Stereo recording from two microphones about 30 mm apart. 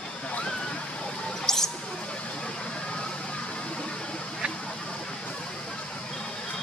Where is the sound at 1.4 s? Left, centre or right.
Centre.